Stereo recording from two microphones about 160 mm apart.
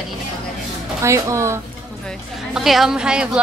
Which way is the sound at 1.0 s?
20° right (ahead or behind).